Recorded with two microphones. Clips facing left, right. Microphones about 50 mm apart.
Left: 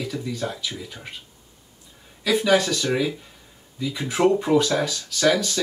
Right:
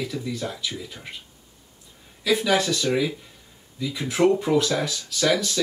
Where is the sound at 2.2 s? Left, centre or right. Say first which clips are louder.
Left 2 dB; centre.